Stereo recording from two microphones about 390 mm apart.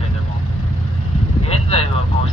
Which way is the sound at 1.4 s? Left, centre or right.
Centre.